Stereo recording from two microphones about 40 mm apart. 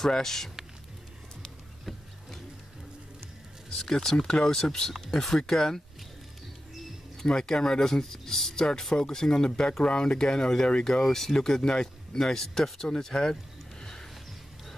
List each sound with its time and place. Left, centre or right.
0.0 s speech: centre
3.7 s speech: centre
7.2 s speech: centre